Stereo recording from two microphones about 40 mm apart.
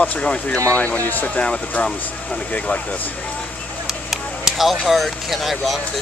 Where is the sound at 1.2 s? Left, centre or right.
Left.